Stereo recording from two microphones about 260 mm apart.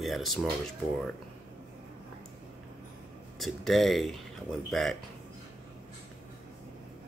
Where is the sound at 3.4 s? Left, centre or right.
Centre.